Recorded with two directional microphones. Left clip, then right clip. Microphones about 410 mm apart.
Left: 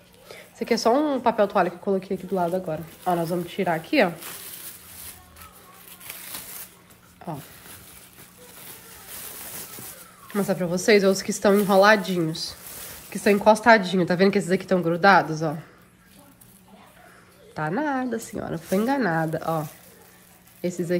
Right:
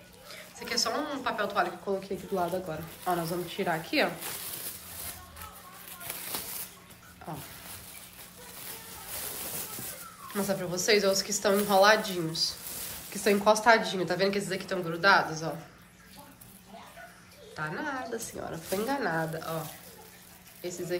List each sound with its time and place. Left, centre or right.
0.3 s a woman's voice: centre
4.2 s coin: centre
6.0 s a sound: centre
10.3 s a woman's voice: centre
17.6 s a woman's voice: centre